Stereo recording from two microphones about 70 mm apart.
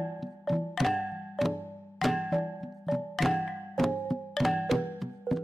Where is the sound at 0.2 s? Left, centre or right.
Centre.